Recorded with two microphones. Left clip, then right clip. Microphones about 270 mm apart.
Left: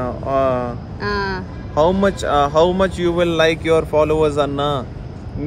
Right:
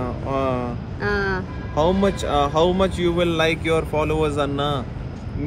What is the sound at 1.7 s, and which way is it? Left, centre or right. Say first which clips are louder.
Speech: left 4 dB; centre.